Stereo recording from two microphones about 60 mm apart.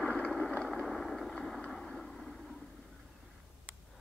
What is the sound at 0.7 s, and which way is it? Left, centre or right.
Vehicle, centre.